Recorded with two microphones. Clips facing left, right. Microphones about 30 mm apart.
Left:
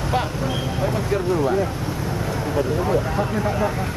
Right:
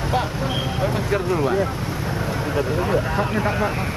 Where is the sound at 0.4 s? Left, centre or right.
Centre.